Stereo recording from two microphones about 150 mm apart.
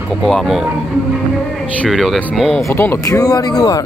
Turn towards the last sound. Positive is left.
turn(degrees=25)  # may be behind; listen again after turning